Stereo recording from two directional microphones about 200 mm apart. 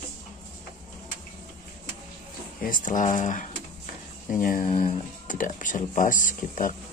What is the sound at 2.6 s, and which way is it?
Speech, 40° left (ahead or behind).